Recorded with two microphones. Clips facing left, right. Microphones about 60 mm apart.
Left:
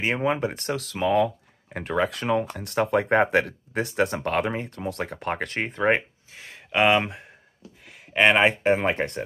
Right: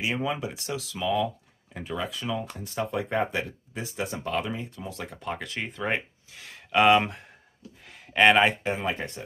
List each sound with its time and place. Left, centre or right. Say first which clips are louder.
0.0 s speech: left 5 dB; left; by 7.2 s centre
7.8 s a sound: left 4 dB; centre
8.2 s speech: even; left
8.5 s speech: left 6 dB; left